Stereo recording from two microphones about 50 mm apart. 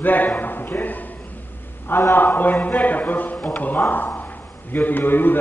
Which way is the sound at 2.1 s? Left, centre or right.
Left.